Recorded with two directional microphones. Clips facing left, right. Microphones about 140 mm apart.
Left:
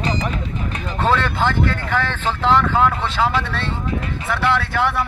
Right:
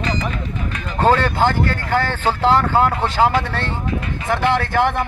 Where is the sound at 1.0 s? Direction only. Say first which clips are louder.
Right 4 dB; 40° right (ahead or behind).